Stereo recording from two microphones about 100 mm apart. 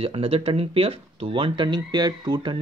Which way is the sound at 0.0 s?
70° right (ahead or behind).